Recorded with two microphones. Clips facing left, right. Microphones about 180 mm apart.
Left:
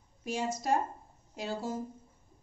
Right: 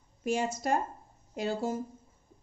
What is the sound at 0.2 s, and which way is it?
Speech, 55° right (ahead or behind).